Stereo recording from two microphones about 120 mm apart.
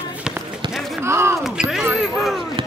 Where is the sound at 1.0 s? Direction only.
20° right (ahead or behind).